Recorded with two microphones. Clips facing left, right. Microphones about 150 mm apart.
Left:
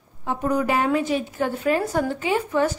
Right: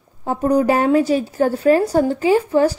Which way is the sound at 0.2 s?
40° right (ahead or behind).